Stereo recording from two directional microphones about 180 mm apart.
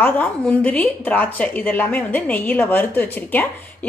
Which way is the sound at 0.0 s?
10° left (ahead or behind).